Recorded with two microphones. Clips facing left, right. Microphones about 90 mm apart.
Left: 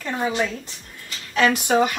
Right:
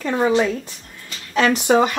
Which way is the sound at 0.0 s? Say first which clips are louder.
Right 7 dB; 40° right (ahead or behind).